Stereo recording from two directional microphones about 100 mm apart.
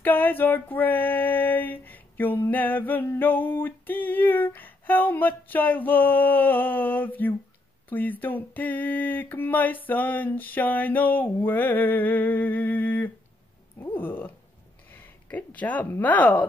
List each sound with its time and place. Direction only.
0.0 s female singing: 20° left (ahead or behind)
7.9 s a sound: 20° left (ahead or behind)
13.7 s female singing: 20° left (ahead or behind)
14.9 s speech: 15° left (ahead or behind)